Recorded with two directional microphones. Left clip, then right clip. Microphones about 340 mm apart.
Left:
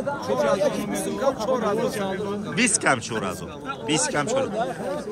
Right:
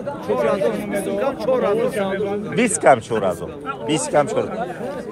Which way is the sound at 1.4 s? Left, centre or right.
Left.